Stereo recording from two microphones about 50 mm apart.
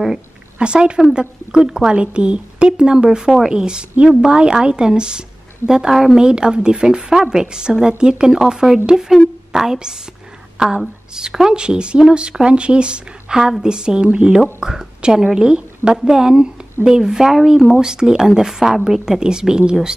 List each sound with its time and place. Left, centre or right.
0.6 s a woman's voice: right